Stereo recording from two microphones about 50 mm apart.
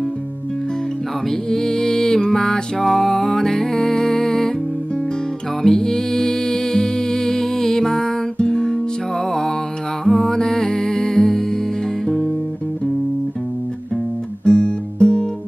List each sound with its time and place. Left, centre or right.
1.3 s music: centre
5.6 s music: centre
14.4 s music: centre